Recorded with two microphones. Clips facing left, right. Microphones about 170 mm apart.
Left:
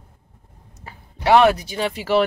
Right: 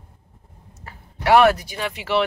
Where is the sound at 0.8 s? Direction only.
20° left (ahead or behind); by 2.2 s 40° left (ahead or behind).